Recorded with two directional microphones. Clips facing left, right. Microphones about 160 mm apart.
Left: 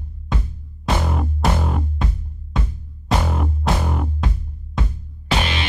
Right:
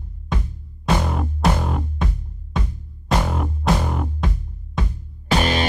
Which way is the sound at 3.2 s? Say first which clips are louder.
Even; centre (ahead or behind).